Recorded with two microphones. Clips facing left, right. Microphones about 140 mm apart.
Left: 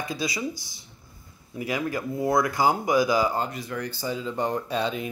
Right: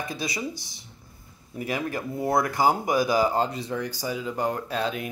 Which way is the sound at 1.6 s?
30° right (ahead or behind).